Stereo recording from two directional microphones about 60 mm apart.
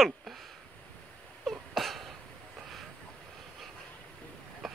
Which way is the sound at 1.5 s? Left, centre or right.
Centre.